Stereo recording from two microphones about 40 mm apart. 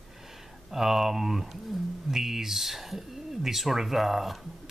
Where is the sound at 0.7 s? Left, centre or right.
Centre.